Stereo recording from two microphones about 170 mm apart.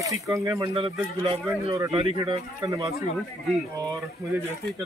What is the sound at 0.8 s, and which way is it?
Speech, 30° right (ahead or behind).